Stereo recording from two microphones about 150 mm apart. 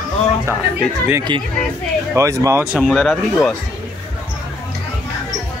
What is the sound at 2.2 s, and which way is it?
Speech, 20° right (ahead or behind).